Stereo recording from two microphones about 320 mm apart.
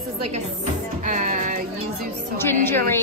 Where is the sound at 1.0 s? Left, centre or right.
Right.